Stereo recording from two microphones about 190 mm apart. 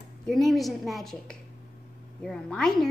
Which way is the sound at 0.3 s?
Centre (ahead or behind).